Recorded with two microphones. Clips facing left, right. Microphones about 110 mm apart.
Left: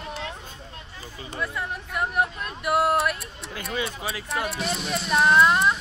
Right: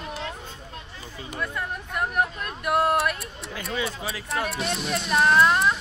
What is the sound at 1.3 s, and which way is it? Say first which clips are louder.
Speech: even; 5° left (ahead or behind).